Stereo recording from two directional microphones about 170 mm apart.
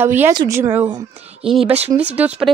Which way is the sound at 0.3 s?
25° right (ahead or behind).